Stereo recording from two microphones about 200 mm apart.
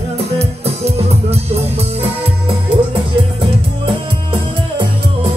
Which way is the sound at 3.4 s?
25° right (ahead or behind).